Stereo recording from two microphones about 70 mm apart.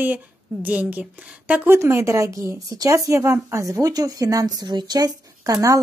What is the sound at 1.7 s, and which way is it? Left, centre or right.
Speech, right.